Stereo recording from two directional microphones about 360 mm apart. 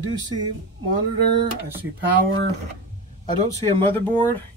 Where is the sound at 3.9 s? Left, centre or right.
Centre.